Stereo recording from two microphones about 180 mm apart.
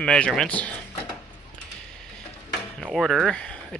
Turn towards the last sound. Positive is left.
turn(degrees=5)  # may be behind; listen again after turning